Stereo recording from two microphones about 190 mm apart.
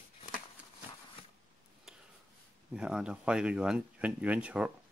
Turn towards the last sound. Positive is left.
turn(degrees=-5)  # may be behind; listen again after turning